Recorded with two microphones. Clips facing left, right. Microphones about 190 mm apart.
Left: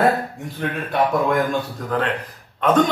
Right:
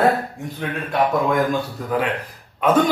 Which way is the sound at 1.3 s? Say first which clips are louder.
Right 1 dB; 5° right (ahead or behind).